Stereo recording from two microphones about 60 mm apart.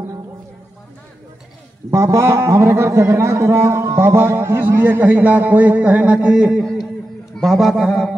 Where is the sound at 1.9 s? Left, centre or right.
Right.